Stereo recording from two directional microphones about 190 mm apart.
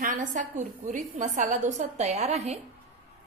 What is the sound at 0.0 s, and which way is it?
A woman's voice, 45° right (ahead or behind).